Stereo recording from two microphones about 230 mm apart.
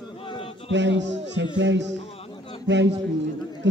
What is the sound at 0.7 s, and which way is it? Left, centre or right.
A man's voice, right.